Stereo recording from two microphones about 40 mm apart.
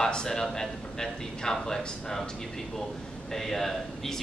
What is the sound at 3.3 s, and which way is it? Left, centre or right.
Speech, centre.